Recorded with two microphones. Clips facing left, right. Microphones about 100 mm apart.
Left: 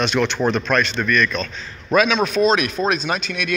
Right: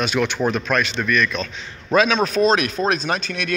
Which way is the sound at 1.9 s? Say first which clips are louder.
Even; 35° right (ahead or behind).